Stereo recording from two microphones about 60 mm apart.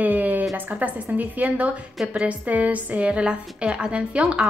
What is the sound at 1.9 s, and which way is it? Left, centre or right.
A woman's voice, centre.